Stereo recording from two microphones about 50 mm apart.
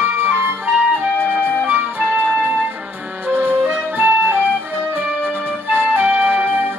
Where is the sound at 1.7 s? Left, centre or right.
Right.